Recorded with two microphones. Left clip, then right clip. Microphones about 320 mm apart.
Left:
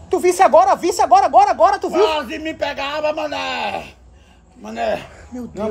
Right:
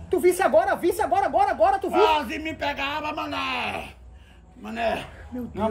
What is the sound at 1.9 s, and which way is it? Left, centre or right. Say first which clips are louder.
A man's voice: left 3 dB; centre.